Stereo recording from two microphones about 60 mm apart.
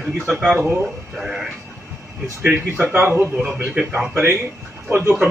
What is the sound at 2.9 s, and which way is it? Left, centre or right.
Speech, right.